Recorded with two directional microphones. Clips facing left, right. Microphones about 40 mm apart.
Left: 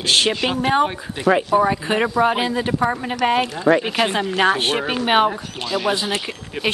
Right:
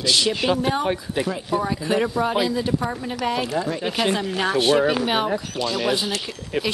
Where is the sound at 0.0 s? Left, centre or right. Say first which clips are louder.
Left 2 dB; left.